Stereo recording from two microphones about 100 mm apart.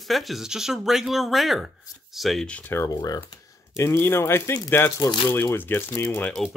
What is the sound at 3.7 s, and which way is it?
Speech, 25° left (ahead or behind).